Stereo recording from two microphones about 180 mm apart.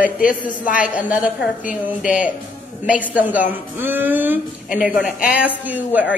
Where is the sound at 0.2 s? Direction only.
50° left (ahead or behind).